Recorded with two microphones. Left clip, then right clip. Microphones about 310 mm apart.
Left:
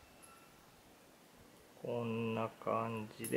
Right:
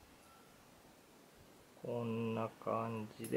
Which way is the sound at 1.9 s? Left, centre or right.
Right.